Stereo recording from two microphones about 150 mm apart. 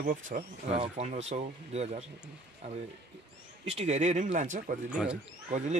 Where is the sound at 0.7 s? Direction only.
45° right (ahead or behind).